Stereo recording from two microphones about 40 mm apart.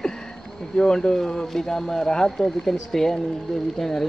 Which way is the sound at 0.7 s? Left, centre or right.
Centre.